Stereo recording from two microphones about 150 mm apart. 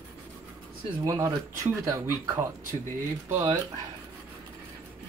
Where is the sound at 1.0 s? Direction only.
20° right (ahead or behind).